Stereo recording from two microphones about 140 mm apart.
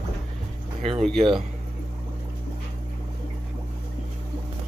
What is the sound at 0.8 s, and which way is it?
Speech, 50° right (ahead or behind).